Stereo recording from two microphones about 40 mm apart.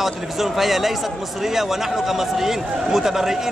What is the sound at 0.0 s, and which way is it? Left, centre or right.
A man's voice, centre.